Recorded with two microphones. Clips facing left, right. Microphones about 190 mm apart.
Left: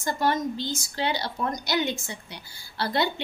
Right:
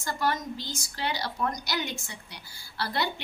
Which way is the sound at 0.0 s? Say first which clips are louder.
Left 4 dB; 25° left (ahead or behind).